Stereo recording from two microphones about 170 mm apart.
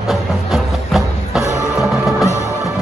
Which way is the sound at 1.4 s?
15° left (ahead or behind).